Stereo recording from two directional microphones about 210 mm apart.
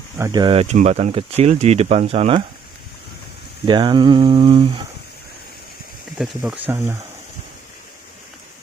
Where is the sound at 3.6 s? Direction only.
20° right (ahead or behind).